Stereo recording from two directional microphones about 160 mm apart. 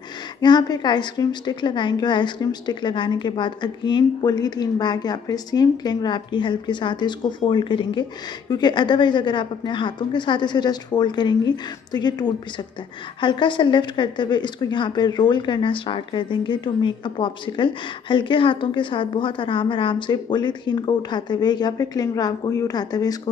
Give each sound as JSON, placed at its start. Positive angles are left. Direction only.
{"t": 0.4, "sound": "a woman's voice", "side_deg": 25}